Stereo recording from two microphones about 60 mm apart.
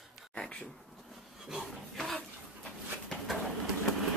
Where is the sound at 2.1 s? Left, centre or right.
Centre.